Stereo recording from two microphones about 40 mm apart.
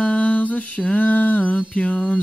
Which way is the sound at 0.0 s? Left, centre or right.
Left.